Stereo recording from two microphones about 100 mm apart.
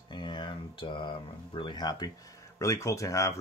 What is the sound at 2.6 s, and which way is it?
Speech, 30° left (ahead or behind).